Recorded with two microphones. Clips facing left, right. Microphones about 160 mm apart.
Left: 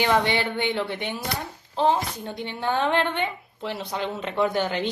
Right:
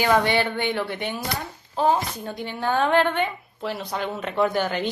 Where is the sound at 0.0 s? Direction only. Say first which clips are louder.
Right 2 dB; 20° left (ahead or behind).